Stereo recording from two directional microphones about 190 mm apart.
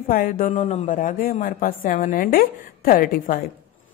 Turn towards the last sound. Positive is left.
turn(degrees=45)  # may be behind; listen again after turning